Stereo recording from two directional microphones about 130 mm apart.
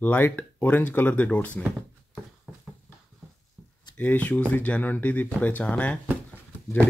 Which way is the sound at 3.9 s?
15° left (ahead or behind).